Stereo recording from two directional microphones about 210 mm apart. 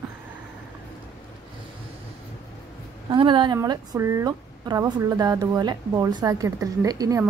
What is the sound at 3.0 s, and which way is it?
Speech, 25° right (ahead or behind).